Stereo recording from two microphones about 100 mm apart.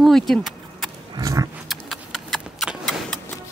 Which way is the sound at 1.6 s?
Centre (ahead or behind).